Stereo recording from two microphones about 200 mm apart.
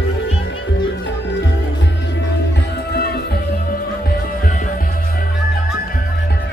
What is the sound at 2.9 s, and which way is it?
Music, 50° left (ahead or behind).